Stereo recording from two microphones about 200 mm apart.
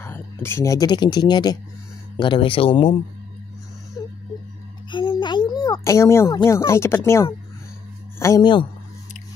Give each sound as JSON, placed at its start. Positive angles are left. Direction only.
{"t": 0.0, "sound": "speech", "side_deg": 10}
{"t": 4.9, "sound": "speech", "side_deg": 25}